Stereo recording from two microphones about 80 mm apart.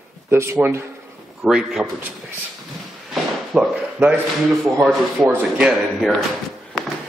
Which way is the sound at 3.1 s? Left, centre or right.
Centre.